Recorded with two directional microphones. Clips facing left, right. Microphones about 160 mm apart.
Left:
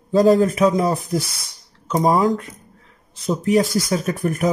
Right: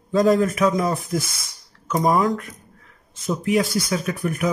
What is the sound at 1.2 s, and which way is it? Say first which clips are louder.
Speech: left 2 dB; centre (ahead or behind).